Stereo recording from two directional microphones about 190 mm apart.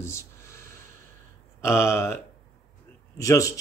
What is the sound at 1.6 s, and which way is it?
Speech, 15° left (ahead or behind).